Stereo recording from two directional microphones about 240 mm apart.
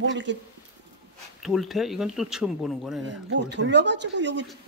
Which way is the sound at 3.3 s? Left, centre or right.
Right.